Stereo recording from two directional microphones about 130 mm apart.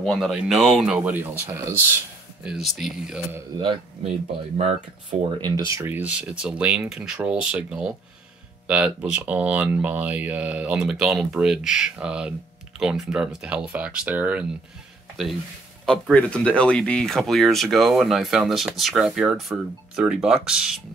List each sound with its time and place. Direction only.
0.0 s speech: centre (ahead or behind); by 1.9 s 15° right (ahead or behind)
2.4 s speech: 5° right (ahead or behind)
3.5 s speech: 40° right (ahead or behind)
5.1 s speech: 50° right (ahead or behind)
5.7 s speech: 20° right (ahead or behind)
15.8 s speech: 5° left (ahead or behind)